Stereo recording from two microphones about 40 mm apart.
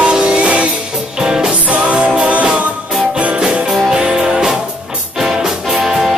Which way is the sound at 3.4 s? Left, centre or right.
Centre.